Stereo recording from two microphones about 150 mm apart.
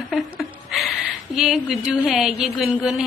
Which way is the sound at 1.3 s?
Centre (ahead or behind).